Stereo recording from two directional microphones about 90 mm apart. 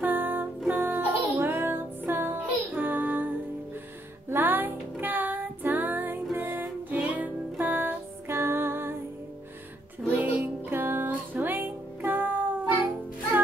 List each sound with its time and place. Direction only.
0.0 s music: 20° right (ahead or behind)
4.3 s music: 20° right (ahead or behind)
10.0 s music: 20° right (ahead or behind)